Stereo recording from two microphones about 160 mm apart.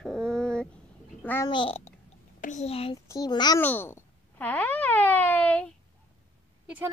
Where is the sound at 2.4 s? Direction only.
45° left (ahead or behind).